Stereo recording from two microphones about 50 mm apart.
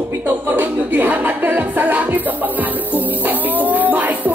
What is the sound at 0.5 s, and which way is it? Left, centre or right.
Music, right.